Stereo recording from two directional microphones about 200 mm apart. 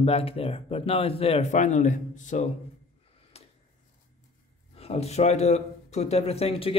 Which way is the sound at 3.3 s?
30° left (ahead or behind).